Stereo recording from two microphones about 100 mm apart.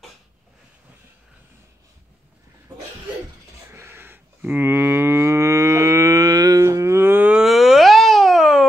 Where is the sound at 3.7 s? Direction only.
25° right (ahead or behind).